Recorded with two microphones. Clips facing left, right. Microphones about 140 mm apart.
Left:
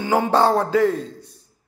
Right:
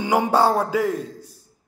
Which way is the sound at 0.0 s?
15° right (ahead or behind).